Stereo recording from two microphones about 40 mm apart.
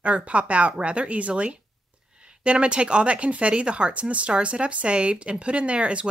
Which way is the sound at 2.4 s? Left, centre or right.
Right.